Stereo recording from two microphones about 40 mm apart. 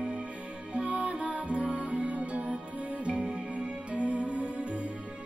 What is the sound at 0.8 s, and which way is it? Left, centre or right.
Music, right.